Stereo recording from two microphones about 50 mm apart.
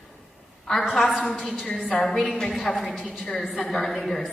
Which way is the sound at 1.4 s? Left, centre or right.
Centre.